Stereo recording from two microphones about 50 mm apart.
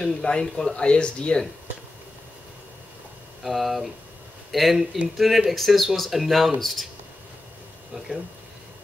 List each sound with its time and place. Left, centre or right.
0.0 s speech: centre
3.4 s speech: centre